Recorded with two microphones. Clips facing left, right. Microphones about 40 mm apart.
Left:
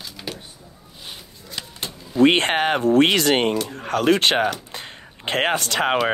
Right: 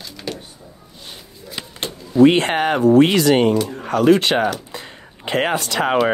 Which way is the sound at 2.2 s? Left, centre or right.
Left.